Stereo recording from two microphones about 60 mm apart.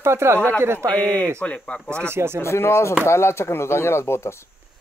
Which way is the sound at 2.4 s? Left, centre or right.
Left.